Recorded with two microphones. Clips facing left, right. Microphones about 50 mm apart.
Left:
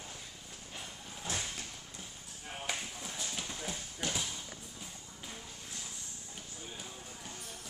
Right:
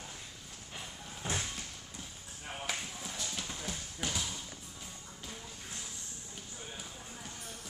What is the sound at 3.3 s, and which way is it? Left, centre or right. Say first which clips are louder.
Clip-clop: left 1 dB; centre.